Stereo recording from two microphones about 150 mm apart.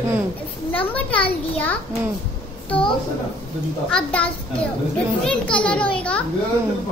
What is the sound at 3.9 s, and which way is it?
A child's voice, 5° left (ahead or behind).